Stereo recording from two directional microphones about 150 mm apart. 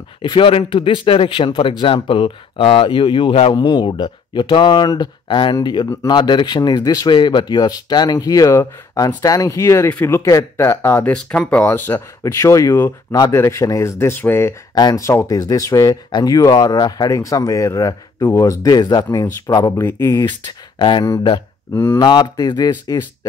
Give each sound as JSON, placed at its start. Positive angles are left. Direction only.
{"t": 0.2, "sound": "speech", "side_deg": 30}
{"t": 20.8, "sound": "speech", "side_deg": 35}
{"t": 21.7, "sound": "speech", "side_deg": 15}
{"t": 22.0, "sound": "speech", "side_deg": 30}